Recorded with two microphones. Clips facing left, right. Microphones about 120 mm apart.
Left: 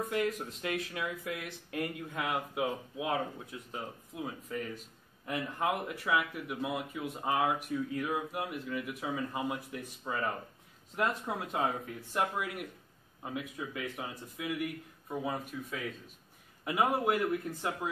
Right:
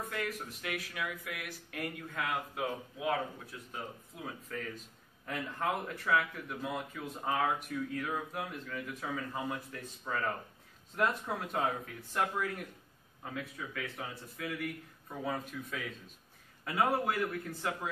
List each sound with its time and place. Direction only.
0.1 s speech: 25° left (ahead or behind)
16.6 s speech: 15° left (ahead or behind)